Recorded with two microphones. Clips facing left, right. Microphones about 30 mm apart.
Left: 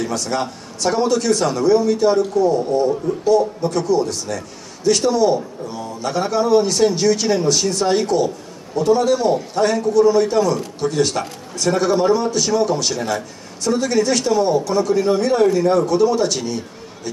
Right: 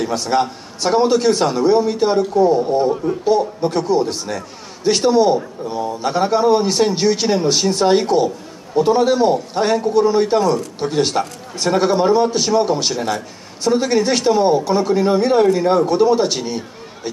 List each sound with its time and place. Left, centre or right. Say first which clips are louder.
0.0 s a man's voice: right 4 dB; right